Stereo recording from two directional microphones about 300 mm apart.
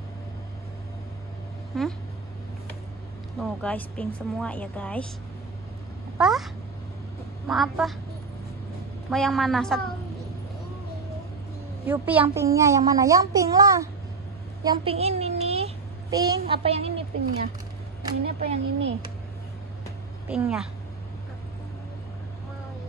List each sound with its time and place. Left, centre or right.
1.7 s a woman's voice: centre
3.3 s a woman's voice: centre
6.1 s a sound: centre
7.4 s a woman's voice: centre
9.1 s a woman's voice: centre
11.9 s a child's voice: centre
18.0 s speech: centre
20.2 s a woman's voice: centre